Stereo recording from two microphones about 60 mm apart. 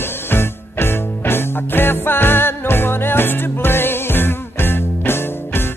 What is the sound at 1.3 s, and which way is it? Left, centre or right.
Music, left.